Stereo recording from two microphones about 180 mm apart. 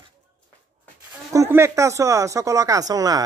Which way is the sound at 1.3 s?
15° right (ahead or behind).